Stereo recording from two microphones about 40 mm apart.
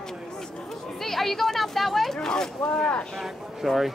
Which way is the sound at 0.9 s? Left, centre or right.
Centre.